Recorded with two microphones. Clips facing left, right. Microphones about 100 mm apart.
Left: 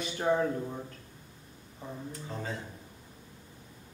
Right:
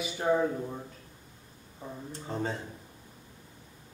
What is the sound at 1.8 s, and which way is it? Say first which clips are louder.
Speech: even; 10° right (ahead or behind).